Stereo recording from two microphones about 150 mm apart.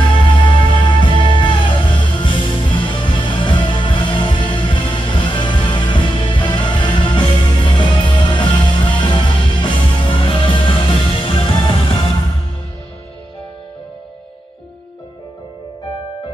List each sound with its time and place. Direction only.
0.5 s music: 35° left (ahead or behind)